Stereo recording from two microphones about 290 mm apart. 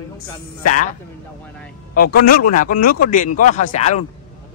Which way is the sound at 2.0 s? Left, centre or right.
Left.